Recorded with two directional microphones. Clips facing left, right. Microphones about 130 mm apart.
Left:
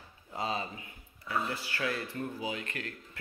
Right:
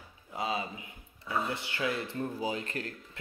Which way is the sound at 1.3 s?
20° right (ahead or behind).